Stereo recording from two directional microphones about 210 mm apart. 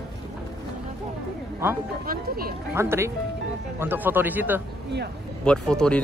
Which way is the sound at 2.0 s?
45° right (ahead or behind).